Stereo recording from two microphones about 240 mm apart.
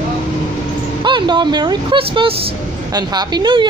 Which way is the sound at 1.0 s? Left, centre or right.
Centre.